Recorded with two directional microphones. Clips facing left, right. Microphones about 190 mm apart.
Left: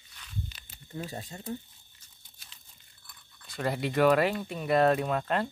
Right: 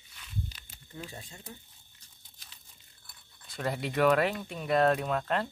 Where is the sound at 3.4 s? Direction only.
Centre (ahead or behind).